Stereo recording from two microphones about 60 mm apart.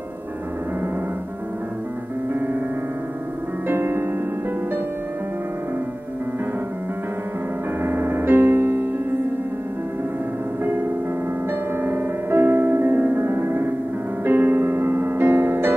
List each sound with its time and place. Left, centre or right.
3.6 s music: right
7.8 s music: right
11.8 s music: right